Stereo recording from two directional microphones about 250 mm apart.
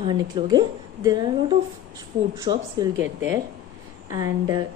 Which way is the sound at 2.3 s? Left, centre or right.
Centre.